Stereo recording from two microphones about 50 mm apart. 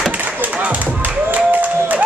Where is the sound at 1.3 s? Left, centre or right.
Right.